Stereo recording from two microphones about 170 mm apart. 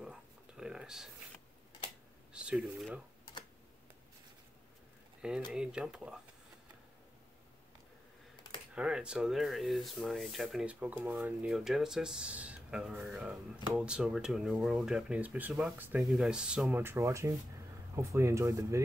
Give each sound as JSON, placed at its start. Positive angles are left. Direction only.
{"t": 0.0, "sound": "a sound", "side_deg": -5}
{"t": 2.3, "sound": "speech", "side_deg": -5}
{"t": 5.5, "sound": "speech", "side_deg": -5}
{"t": 8.7, "sound": "speech", "side_deg": -5}